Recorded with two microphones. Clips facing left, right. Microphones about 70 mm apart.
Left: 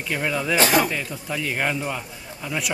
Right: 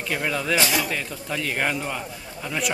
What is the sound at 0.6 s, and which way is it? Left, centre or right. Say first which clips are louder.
Speech: left 7 dB; left.